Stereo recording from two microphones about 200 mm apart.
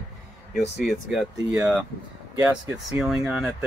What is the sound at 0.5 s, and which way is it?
Speech, centre (ahead or behind).